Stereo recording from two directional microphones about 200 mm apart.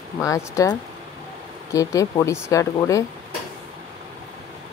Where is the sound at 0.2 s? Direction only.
15° left (ahead or behind).